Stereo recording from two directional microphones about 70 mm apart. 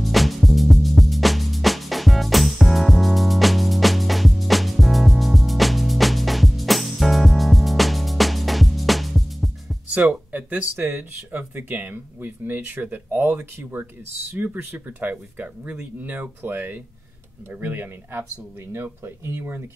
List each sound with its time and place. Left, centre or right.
0.0 s music: centre
10.3 s speech: right
10.8 s speech: right